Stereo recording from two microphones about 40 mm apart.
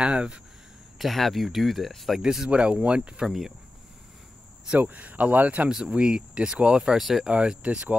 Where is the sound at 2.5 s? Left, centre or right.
Right.